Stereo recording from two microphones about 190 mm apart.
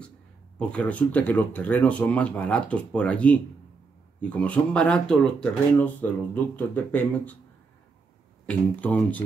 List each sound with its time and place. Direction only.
0.6 s speech: 5° left (ahead or behind)
8.5 s speech: 5° left (ahead or behind)